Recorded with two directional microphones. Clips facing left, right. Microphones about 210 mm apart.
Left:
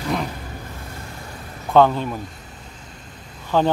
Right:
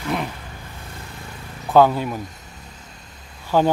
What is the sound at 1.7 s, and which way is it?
Speech, 5° right (ahead or behind).